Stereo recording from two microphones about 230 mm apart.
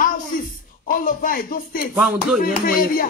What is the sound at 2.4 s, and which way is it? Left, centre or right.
Speech, left.